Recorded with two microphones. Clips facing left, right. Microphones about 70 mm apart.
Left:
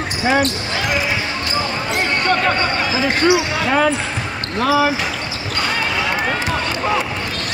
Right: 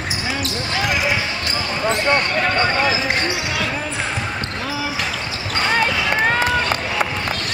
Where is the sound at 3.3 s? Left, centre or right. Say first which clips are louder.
Left 7 dB; left.